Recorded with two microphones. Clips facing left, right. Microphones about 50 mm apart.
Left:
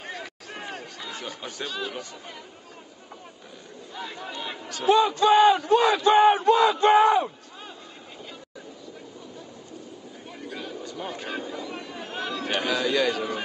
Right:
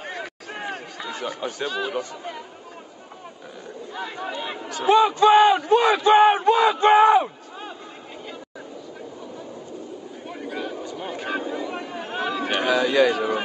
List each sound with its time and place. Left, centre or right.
0.0 s a sound: centre
1.3 s a man's voice: right
1.7 s speech: centre
3.9 s speech: centre
4.8 s a man's voice: right
10.2 s a sound: centre